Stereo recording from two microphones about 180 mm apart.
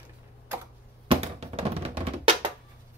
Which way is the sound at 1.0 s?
35° right (ahead or behind).